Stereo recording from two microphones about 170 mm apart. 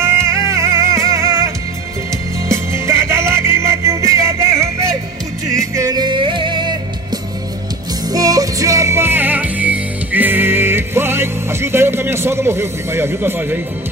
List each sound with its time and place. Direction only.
0.0 s music: 15° right (ahead or behind)
2.5 s music: 15° right (ahead or behind)
8.1 s music: 20° right (ahead or behind)